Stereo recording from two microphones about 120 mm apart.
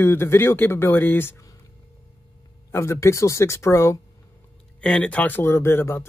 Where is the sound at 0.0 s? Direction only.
20° left (ahead or behind).